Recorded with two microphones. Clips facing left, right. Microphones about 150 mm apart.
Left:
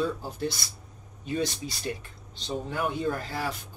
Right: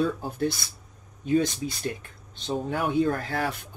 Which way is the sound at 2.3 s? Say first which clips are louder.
Right 3 dB; 55° right (ahead or behind).